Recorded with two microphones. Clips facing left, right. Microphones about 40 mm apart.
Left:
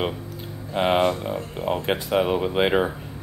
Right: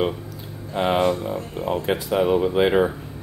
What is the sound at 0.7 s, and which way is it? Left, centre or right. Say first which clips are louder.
Speech: even; left.